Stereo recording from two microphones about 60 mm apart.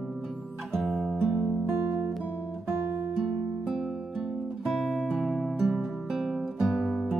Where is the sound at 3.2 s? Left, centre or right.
Centre.